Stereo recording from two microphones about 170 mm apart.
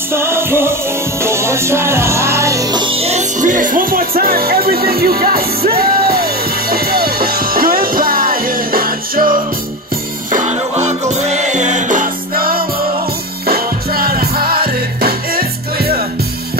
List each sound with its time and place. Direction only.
0.1 s music: 15° right (ahead or behind); by 9.4 s 55° right (ahead or behind)
10.3 s music: 45° right (ahead or behind); by 16.0 s 65° right (ahead or behind)